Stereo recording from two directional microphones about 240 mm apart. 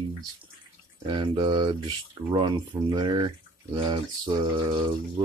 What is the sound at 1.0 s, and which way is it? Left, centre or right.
Speech, centre.